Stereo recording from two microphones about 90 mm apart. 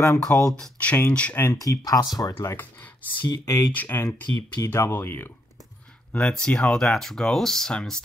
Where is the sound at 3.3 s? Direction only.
45° left (ahead or behind).